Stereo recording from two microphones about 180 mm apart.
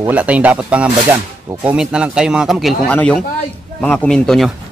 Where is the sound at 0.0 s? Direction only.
5° right (ahead or behind).